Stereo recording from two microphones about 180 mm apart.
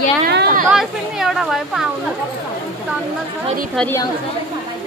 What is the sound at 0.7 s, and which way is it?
Speech, centre (ahead or behind).